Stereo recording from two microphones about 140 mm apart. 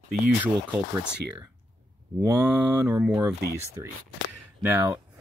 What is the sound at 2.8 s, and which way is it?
Speech, 10° right (ahead or behind).